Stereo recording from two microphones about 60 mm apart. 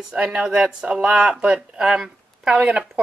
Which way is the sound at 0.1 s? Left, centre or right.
Centre.